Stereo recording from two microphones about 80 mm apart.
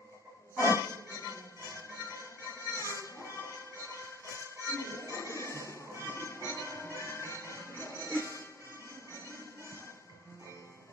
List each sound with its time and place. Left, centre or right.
0.6 s music: left